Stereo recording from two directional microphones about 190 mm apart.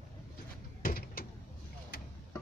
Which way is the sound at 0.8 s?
50° left (ahead or behind).